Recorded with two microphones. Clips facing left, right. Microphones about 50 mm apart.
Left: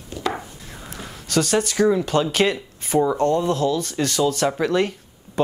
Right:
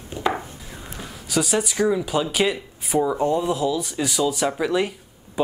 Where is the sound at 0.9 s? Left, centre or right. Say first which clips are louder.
Left 2 dB; centre.